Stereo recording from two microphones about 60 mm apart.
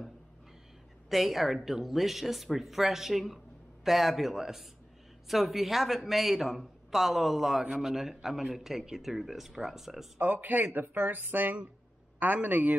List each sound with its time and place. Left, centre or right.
1.0 s speech: centre
10.2 s speech: right